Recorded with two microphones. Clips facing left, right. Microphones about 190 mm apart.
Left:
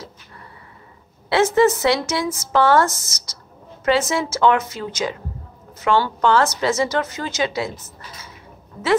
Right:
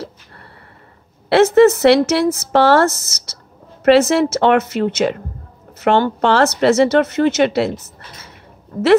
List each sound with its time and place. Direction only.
1.3 s speech: 60° right (ahead or behind)
8.7 s speech: 50° right (ahead or behind)